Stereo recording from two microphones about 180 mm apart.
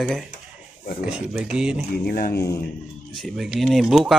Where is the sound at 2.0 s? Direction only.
60° left (ahead or behind).